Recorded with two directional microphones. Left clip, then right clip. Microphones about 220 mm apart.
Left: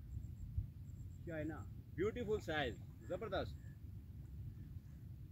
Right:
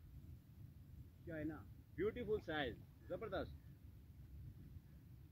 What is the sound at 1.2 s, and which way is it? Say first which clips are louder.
Speech: left 2 dB; 15° left (ahead or behind).